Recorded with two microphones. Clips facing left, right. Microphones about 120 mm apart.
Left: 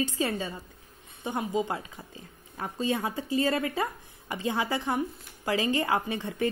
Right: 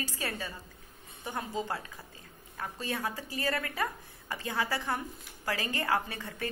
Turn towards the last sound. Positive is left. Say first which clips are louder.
# left 4 dB
turn(degrees=20)  # may be behind; listen again after turning